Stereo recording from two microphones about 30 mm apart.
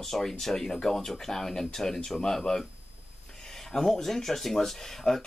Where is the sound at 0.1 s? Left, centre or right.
Centre.